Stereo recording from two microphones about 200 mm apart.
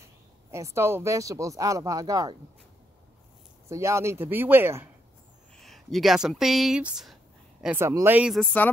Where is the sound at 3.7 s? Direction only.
15° right (ahead or behind).